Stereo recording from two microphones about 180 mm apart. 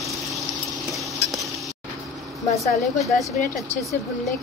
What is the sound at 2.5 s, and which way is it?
Speech, 20° left (ahead or behind).